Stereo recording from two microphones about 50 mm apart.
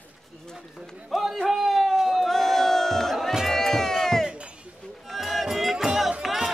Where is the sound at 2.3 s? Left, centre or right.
Centre.